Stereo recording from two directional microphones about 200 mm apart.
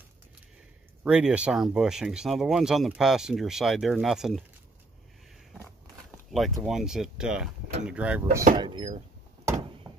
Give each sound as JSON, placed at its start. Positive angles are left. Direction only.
{"t": 1.0, "sound": "speech", "side_deg": -5}
{"t": 6.3, "sound": "speech", "side_deg": 0}
{"t": 8.5, "sound": "speech", "side_deg": -25}